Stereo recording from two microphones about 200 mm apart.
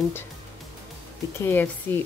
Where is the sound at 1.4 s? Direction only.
10° left (ahead or behind).